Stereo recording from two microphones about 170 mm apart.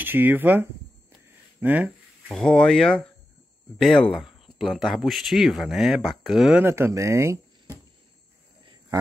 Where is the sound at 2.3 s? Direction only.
5° left (ahead or behind).